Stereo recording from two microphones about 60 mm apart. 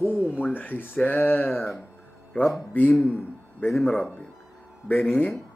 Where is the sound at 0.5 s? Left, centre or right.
Left.